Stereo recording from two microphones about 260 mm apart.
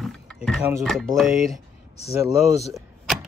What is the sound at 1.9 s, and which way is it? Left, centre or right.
Speech, left.